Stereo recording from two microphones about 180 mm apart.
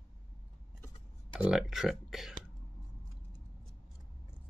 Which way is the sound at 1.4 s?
5° right (ahead or behind).